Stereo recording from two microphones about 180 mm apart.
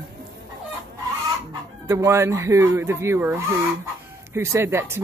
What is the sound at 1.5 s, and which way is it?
Speech, 15° right (ahead or behind).